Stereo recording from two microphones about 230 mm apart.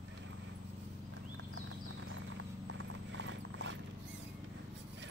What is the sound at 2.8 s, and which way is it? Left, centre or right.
Clip-clop, right.